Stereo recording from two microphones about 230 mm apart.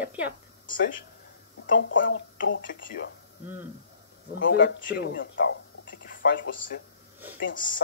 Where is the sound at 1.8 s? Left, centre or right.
Left.